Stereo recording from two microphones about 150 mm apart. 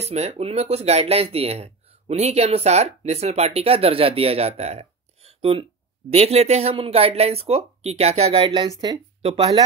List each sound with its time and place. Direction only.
0.0 s speech: 45° right (ahead or behind)